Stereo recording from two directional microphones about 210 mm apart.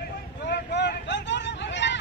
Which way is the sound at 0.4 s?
55° left (ahead or behind).